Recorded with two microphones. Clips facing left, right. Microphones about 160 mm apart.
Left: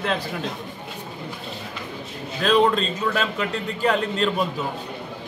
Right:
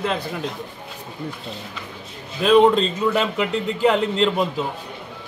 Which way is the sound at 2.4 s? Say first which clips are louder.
Right 5 dB; 15° right (ahead or behind).